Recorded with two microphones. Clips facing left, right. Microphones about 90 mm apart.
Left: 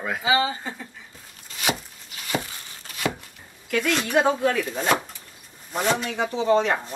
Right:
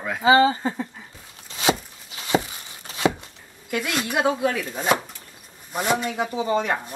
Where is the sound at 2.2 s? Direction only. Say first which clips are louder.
Right 6 dB; 20° right (ahead or behind).